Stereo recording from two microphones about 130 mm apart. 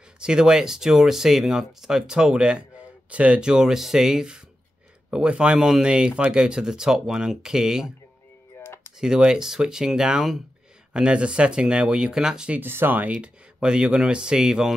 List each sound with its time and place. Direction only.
0.2 s speech: 5° right (ahead or behind)
8.5 s a sound: 15° left (ahead or behind)
9.0 s speech: 5° right (ahead or behind)